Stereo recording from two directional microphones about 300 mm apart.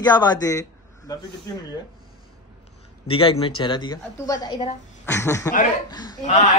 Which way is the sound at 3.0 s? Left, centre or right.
Centre.